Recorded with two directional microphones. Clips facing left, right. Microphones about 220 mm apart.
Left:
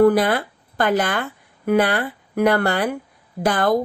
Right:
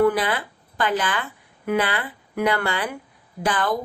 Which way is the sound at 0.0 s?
40° left (ahead or behind).